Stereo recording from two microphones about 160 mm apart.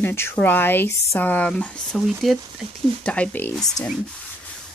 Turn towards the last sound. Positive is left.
turn(degrees=0)  # may be behind; listen again after turning